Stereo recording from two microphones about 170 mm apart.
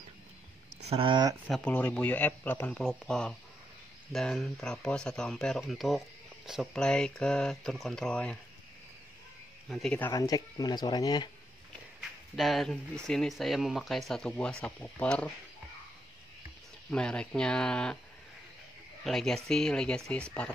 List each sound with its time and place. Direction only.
0.8 s speech: 30° right (ahead or behind)
1.5 s speech: 10° left (ahead or behind)
9.7 s speech: 5° left (ahead or behind)
10.1 s speech: 20° left (ahead or behind)
12.4 s speech: centre (ahead or behind)
16.9 s speech: 5° left (ahead or behind)
19.0 s speech: centre (ahead or behind)